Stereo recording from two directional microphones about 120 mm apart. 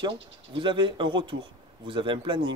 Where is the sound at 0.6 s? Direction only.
45° right (ahead or behind).